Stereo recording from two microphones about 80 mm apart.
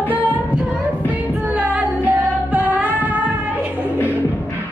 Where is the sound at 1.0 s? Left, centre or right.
Right.